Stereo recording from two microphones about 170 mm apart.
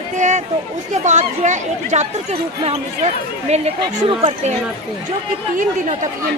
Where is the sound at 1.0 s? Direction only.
45° right (ahead or behind).